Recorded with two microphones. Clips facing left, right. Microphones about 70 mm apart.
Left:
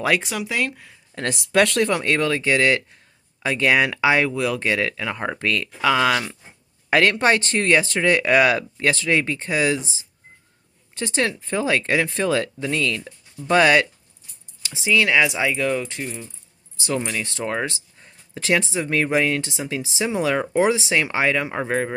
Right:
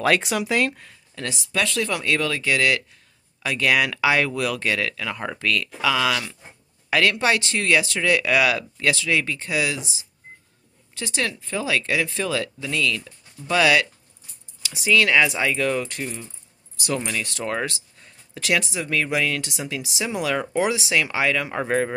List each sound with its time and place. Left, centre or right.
0.2 s speech: centre
1.3 s speech: left
1.9 s speech: left
14.7 s speech: left
16.8 s speech: left
21.5 s speech: centre